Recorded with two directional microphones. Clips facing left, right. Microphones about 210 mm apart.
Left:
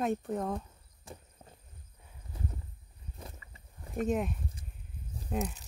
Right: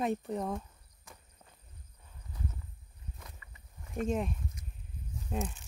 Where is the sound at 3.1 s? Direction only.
30° left (ahead or behind).